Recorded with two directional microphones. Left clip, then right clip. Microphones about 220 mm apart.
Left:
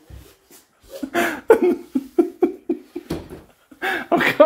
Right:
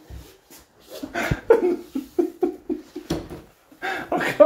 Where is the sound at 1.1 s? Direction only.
55° left (ahead or behind).